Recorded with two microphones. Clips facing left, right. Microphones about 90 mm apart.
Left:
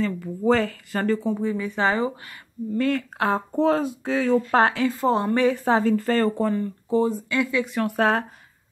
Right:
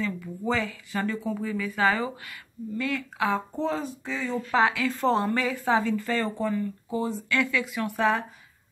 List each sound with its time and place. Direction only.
0.0 s speech: 50° left (ahead or behind)
1.1 s speech: 30° left (ahead or behind)
2.7 s speech: 45° left (ahead or behind)
3.6 s speech: 70° left (ahead or behind)
4.5 s speech: 50° left (ahead or behind)
4.9 s a woman's voice: 15° left (ahead or behind)
5.2 s speech: 25° left (ahead or behind)
7.2 s speech: 20° left (ahead or behind)
7.7 s speech: 55° left (ahead or behind)